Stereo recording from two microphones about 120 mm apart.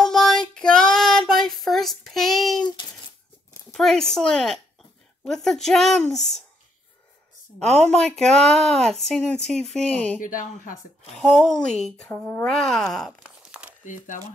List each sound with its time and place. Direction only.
0.0 s child singing: 5° left (ahead or behind)
3.7 s speech: 5° left (ahead or behind)
7.9 s speech: 5° left (ahead or behind)
11.1 s speech: 5° left (ahead or behind)
12.1 s speech: 15° left (ahead or behind)
12.4 s speech: 5° left (ahead or behind)
13.8 s speech: 90° left